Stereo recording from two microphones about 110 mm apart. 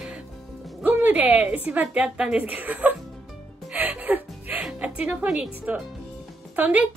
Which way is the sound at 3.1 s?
Centre (ahead or behind).